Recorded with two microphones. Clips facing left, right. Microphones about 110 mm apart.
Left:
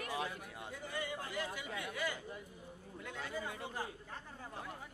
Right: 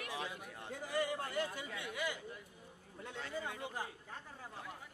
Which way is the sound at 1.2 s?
45° right (ahead or behind).